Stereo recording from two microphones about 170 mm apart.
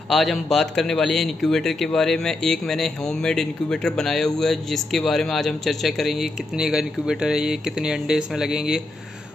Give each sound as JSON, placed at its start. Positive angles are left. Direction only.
{"t": 0.1, "sound": "a man's voice", "side_deg": 0}